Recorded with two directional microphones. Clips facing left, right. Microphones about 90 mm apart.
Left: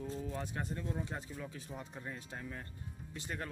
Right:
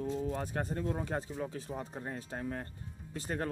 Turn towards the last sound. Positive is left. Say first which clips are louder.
# right 6 dB
turn(degrees=-40)  # may be behind; listen again after turning